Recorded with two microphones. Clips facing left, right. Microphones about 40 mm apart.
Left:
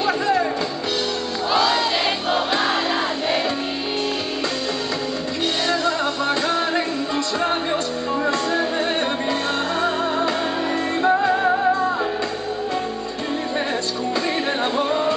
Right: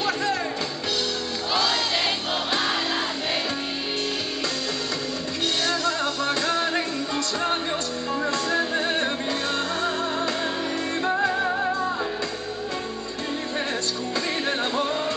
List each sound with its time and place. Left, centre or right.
0.0 s music: centre
1.5 s crowd: centre
5.7 s music: centre
8.1 s music: centre
14.6 s music: centre